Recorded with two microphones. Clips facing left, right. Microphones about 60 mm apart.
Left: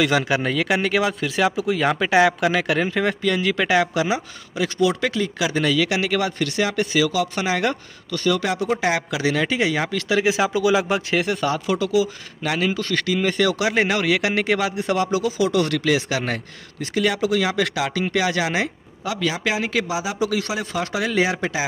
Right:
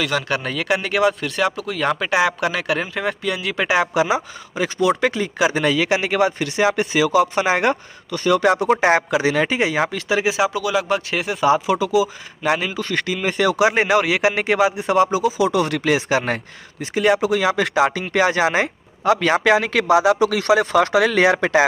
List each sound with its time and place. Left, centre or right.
0.0 s speech: centre
3.9 s a man's voice: right
4.7 s speech: right
5.5 s a man's voice: right
6.0 s a man's voice: centre
8.3 s speech: right
9.2 s a man's voice: right
9.9 s speech: centre
11.4 s a man's voice: centre
15.7 s a man's voice: right
17.4 s a man's voice: right
19.0 s speech: right